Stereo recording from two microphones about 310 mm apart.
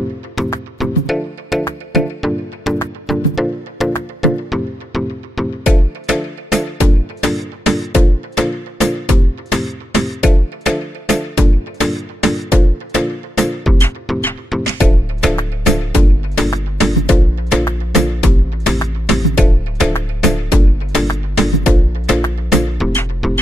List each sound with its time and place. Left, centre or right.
0.4 s music: centre